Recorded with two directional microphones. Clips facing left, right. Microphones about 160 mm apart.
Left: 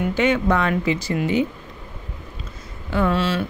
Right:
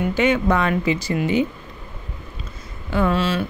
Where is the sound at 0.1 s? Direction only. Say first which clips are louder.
Right 1 dB; 10° right (ahead or behind).